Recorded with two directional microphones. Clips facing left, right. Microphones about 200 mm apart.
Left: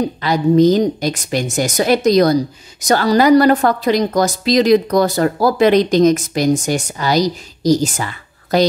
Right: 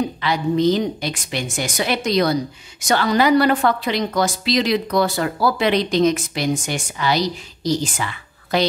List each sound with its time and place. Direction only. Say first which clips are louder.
0.2 s speech: left 8 dB; 40° left (ahead or behind)